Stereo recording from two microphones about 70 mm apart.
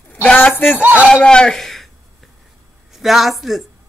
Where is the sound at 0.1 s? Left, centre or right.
Left.